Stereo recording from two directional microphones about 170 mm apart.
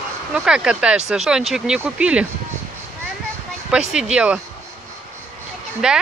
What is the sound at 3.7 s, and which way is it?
Speech, 5° right (ahead or behind).